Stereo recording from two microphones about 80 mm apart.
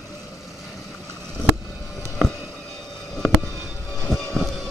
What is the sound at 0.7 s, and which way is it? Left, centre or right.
Vehicle, left.